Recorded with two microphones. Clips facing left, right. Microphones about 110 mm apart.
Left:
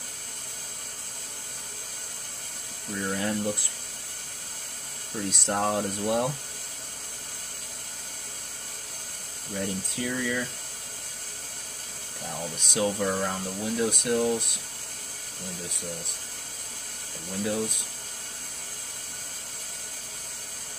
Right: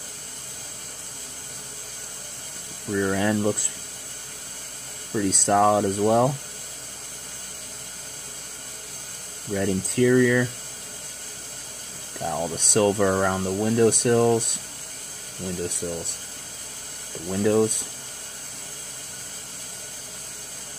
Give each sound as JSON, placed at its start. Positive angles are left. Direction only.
{"t": 2.9, "sound": "speech", "side_deg": -90}
{"t": 5.1, "sound": "speech", "side_deg": -75}
{"t": 9.5, "sound": "speech", "side_deg": -85}
{"t": 12.2, "sound": "speech", "side_deg": -65}
{"t": 17.3, "sound": "speech", "side_deg": -85}